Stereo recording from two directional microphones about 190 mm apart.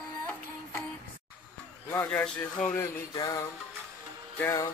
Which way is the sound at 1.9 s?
10° left (ahead or behind).